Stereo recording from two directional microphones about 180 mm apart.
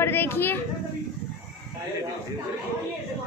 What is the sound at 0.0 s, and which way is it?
Speech, 10° left (ahead or behind).